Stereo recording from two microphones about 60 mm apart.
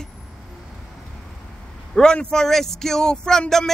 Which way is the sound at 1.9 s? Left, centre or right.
Centre.